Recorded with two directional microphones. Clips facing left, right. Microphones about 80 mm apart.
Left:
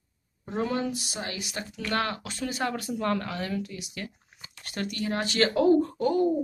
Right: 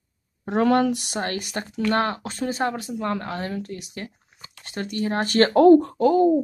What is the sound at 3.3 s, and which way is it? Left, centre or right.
Speech, right.